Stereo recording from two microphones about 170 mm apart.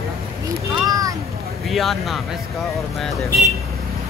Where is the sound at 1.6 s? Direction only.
Centre (ahead or behind).